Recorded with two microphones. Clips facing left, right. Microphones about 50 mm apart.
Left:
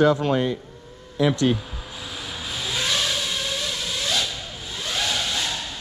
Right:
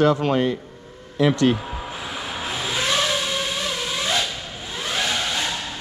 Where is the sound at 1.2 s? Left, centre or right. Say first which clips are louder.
Right 2 dB; right.